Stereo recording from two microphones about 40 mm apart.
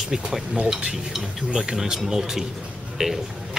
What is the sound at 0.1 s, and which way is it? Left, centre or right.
Speech, centre.